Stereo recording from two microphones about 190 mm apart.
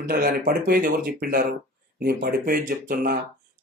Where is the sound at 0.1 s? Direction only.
50° right (ahead or behind).